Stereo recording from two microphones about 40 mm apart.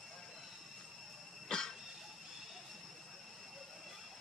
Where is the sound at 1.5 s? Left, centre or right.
Centre.